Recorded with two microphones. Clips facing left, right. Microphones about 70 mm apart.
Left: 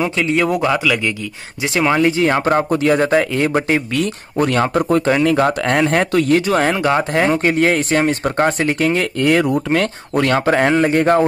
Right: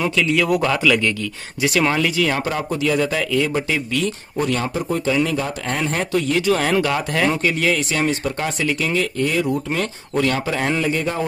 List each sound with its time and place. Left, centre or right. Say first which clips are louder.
0.0 s speech: left 2 dB; left
0.8 s speech: right 1 dB; centre
1.6 s speech: left 3 dB; left
6.4 s speech: left 2 dB; left